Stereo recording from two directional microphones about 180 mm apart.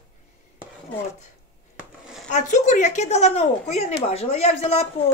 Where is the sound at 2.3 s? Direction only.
40° left (ahead or behind).